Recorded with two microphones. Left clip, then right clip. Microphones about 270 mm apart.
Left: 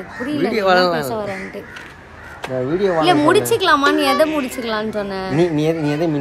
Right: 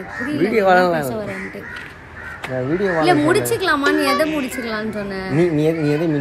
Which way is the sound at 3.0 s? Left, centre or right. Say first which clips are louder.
Left 2 dB; centre.